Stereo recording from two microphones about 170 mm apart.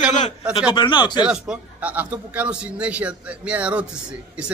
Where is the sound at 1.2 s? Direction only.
5° right (ahead or behind).